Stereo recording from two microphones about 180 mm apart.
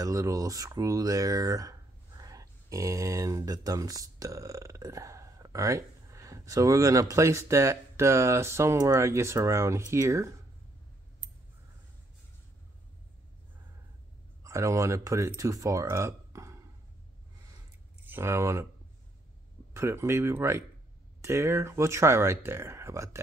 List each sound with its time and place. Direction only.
0.0 s speech: 20° right (ahead or behind)
14.4 s speech: 15° right (ahead or behind)
18.0 s speech: 15° right (ahead or behind)
19.7 s speech: 15° right (ahead or behind)